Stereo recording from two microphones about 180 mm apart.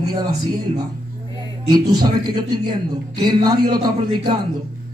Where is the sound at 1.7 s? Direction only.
25° right (ahead or behind).